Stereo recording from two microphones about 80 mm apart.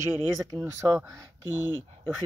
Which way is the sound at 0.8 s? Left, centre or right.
Right.